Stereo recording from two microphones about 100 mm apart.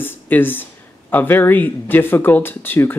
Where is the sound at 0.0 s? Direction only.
20° left (ahead or behind).